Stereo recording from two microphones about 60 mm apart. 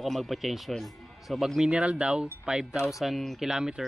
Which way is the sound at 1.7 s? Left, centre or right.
Centre.